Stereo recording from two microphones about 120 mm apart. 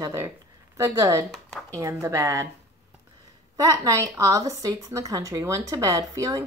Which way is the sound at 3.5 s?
30° right (ahead or behind).